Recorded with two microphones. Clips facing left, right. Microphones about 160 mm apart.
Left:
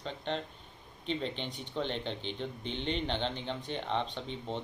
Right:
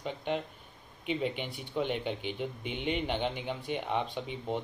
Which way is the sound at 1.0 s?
10° right (ahead or behind).